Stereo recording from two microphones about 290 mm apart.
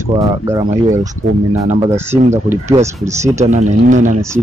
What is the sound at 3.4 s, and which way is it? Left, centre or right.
Speech, right.